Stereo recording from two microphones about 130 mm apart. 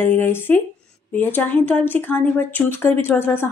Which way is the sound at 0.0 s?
15° left (ahead or behind).